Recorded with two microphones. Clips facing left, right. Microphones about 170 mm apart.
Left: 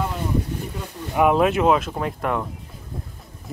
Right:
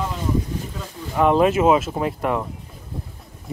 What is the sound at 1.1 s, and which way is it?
Speech, 5° left (ahead or behind).